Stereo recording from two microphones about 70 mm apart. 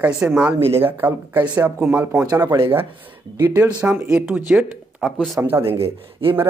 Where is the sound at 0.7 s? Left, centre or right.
Right.